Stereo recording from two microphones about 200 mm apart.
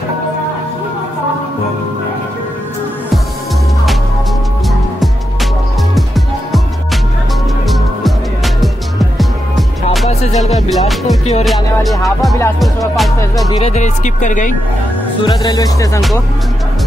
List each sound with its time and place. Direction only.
5.9 s music: centre (ahead or behind)
8.5 s music: centre (ahead or behind)
13.6 s speech: 35° left (ahead or behind)
15.2 s speech: 20° left (ahead or behind)